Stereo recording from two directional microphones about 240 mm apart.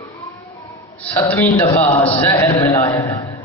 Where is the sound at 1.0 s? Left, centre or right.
Centre.